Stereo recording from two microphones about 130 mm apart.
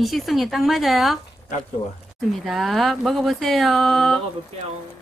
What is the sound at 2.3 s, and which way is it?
Speech, centre (ahead or behind).